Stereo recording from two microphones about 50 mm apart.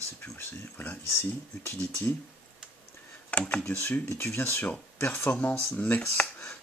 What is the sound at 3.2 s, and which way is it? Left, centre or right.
Computer keyboard, left.